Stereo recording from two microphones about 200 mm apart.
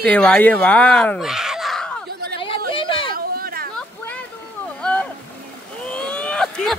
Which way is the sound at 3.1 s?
45° right (ahead or behind).